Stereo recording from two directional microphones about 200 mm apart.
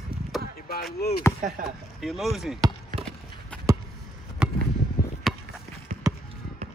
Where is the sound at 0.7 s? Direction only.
50° left (ahead or behind).